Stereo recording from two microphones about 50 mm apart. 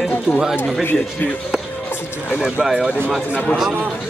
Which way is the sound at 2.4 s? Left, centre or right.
Centre.